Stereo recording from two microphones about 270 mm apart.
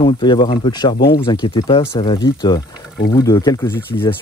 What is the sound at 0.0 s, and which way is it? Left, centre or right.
Speech, centre.